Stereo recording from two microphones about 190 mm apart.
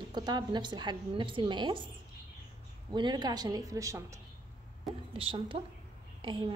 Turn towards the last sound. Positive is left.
turn(degrees=-25)  # may be behind; listen again after turning